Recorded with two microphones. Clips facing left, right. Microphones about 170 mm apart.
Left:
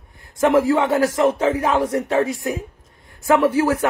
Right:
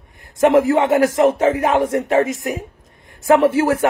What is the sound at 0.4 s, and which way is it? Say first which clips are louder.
Speech: right 3 dB; 20° right (ahead or behind).